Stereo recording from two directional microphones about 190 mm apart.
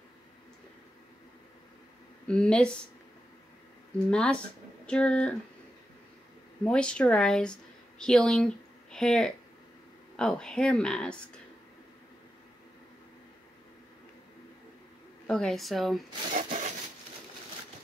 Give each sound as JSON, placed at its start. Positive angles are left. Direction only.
{"t": 2.2, "sound": "speech", "side_deg": 5}
{"t": 4.1, "sound": "speech", "side_deg": 5}
{"t": 6.6, "sound": "speech", "side_deg": 5}
{"t": 15.2, "sound": "speech", "side_deg": 5}
{"t": 16.3, "sound": "rub", "side_deg": -40}